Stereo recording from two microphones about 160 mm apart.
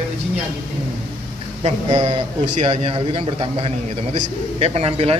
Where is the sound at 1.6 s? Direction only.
45° right (ahead or behind).